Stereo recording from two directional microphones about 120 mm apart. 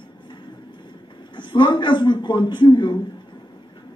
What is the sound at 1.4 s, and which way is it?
A man's voice, 40° left (ahead or behind).